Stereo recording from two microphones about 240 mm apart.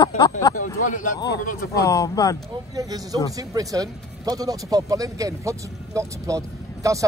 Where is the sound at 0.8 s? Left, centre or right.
Left.